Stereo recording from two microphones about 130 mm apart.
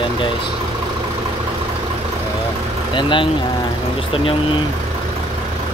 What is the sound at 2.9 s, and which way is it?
Speech, 40° left (ahead or behind).